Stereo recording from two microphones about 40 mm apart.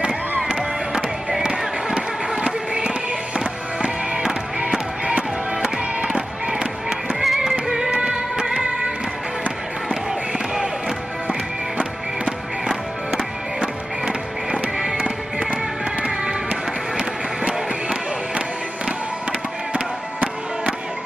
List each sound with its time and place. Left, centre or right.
2.4 s music: right
7.2 s music: centre
13.1 s music: right
19.7 s music: right